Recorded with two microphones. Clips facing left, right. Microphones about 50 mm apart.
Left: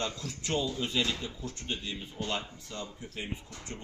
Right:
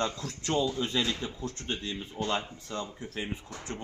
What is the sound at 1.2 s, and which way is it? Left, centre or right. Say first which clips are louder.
A man's voice: right 3 dB; right.